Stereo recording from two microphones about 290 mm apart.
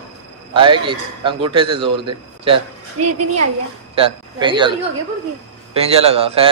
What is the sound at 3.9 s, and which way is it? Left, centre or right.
A man's voice, centre.